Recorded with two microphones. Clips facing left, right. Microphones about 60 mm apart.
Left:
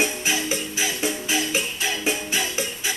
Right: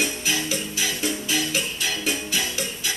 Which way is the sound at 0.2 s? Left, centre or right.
Left.